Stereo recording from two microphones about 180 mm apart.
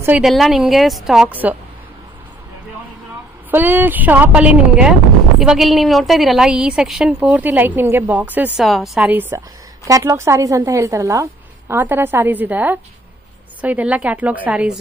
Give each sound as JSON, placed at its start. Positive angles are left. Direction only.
{"t": 0.0, "sound": "a woman's voice", "side_deg": -5}
{"t": 3.4, "sound": "a woman's voice", "side_deg": -10}